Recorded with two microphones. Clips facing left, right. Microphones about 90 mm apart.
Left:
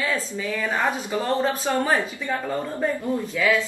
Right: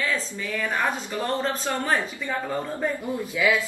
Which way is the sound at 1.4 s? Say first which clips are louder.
Left 3 dB; 5° left (ahead or behind).